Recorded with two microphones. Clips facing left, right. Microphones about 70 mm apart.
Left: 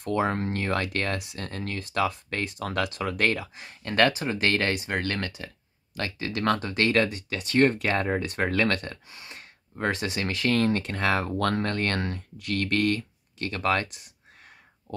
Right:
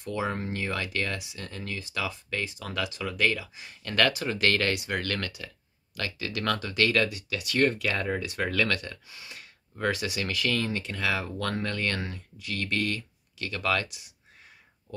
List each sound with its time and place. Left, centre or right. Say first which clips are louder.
0.0 s speech: left 5 dB; left
3.8 s speech: left 3 dB; left